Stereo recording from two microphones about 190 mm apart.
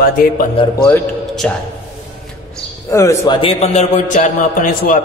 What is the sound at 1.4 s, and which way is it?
Speech, 5° left (ahead or behind).